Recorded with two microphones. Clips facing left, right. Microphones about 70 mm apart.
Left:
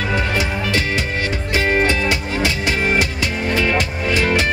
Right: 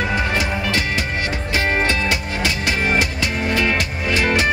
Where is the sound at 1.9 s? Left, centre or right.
Left.